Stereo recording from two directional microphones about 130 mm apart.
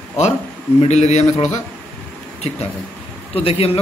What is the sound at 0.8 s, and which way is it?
Speech, 60° left (ahead or behind).